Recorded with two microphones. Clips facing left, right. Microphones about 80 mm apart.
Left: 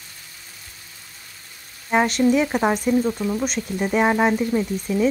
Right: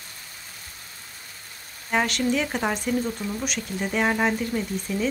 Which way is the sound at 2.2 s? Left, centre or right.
Left.